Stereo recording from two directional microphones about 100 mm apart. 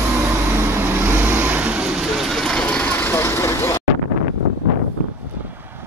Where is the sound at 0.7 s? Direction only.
20° right (ahead or behind).